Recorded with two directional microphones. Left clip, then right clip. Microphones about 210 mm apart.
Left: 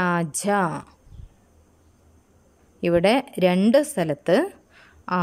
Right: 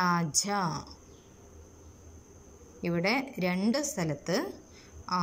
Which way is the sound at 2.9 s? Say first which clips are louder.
Left 10 dB; 50° left (ahead or behind).